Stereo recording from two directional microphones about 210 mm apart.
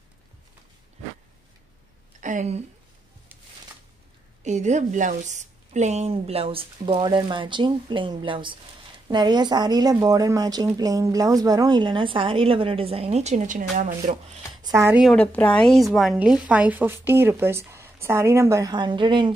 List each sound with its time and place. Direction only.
2.1 s a woman's voice: 35° right (ahead or behind)
4.4 s speech: 35° right (ahead or behind)
14.8 s a woman's voice: 10° right (ahead or behind)
15.0 s a woman's voice: 5° left (ahead or behind); by 19.3 s 25° right (ahead or behind)